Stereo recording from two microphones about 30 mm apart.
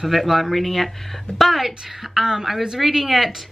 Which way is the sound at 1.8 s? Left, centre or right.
Centre.